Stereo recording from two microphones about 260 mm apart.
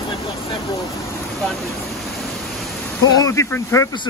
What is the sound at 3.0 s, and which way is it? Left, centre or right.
Speech, centre.